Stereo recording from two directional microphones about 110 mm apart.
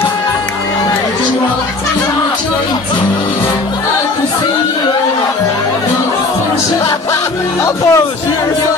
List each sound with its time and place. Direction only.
7.6 s speech: 30° left (ahead or behind)